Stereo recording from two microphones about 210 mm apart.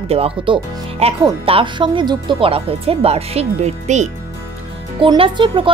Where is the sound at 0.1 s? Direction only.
30° right (ahead or behind).